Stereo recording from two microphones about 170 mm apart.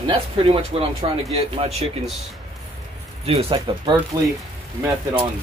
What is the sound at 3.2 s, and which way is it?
Speech, 30° right (ahead or behind).